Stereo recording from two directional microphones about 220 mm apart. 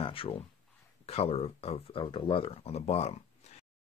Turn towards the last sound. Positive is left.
turn(degrees=30)  # may be behind; listen again after turning